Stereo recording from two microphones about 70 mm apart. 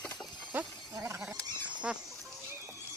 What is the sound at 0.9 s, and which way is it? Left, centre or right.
Goat, right.